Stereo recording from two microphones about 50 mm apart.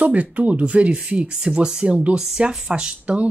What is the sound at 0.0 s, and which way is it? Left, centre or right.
Speech, right.